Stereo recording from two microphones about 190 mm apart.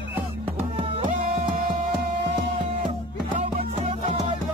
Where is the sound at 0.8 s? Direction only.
30° right (ahead or behind).